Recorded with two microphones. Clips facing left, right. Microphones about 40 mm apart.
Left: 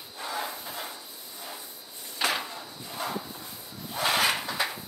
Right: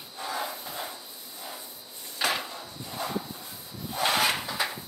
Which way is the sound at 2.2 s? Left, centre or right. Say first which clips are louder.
Even; centre.